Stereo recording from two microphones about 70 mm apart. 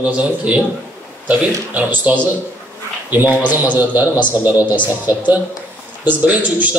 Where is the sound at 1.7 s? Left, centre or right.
Right.